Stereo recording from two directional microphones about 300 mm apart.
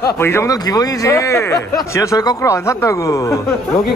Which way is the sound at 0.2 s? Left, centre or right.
Centre.